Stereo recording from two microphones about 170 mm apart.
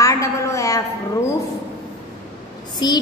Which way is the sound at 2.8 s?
25° left (ahead or behind).